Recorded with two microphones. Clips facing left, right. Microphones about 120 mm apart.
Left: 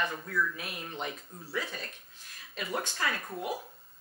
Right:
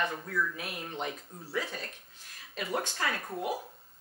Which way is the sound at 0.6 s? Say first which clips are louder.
Right 1 dB; 50° right (ahead or behind).